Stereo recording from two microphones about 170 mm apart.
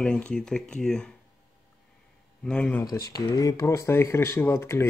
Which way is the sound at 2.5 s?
10° left (ahead or behind).